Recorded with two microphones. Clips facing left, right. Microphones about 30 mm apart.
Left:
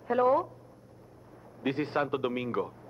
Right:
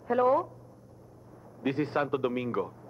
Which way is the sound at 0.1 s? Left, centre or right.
Left.